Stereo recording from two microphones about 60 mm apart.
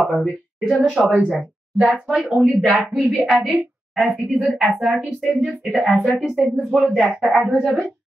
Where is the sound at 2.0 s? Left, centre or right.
Centre.